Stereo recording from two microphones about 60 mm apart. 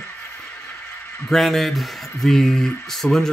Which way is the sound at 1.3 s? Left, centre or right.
Centre.